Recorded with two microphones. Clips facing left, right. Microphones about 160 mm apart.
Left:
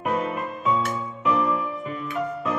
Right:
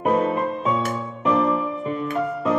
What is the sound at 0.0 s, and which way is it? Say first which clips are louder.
Music: right 6 dB; 30° right (ahead or behind).